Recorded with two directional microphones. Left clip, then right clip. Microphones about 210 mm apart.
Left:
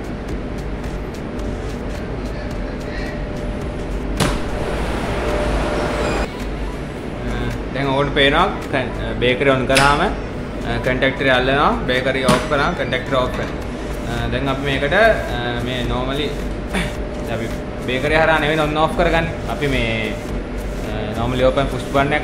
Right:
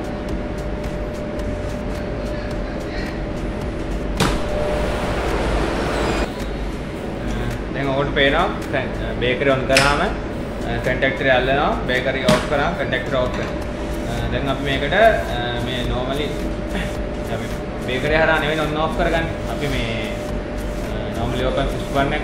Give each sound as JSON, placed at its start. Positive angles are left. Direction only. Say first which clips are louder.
{"t": 8.0, "sound": "speech", "louder": "left 2 dB", "side_deg": 20}
{"t": 14.7, "sound": "speech", "louder": "left 1 dB", "side_deg": 25}
{"t": 17.8, "sound": "speech", "louder": "left 2 dB", "side_deg": 20}
{"t": 21.4, "sound": "a man's voice", "louder": "left 6 dB", "side_deg": 35}